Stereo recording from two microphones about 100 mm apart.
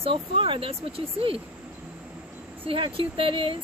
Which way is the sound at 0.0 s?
60° right (ahead or behind).